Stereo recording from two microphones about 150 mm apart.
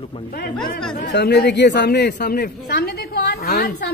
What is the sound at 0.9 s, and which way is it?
A woman's voice, 90° left.